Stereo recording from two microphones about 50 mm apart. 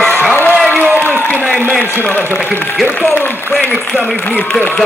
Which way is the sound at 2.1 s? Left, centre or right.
Left.